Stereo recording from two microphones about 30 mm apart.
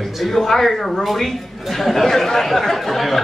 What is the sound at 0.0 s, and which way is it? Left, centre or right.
A man's voice, centre.